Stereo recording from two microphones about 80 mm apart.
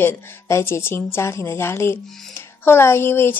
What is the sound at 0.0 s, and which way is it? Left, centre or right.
A woman's voice, left.